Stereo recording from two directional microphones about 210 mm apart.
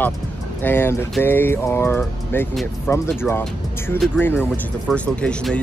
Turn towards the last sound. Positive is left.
turn(degrees=5)  # may be behind; listen again after turning